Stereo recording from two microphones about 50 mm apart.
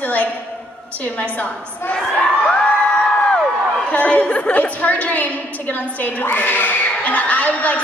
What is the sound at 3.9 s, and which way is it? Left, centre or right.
Speech, left.